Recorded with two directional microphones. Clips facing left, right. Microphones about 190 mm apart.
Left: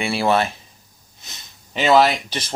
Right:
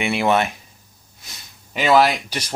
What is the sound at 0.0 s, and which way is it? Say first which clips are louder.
Speech: even; 20° right (ahead or behind).